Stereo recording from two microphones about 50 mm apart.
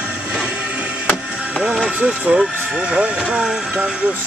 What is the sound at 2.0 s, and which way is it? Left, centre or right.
Speech, right.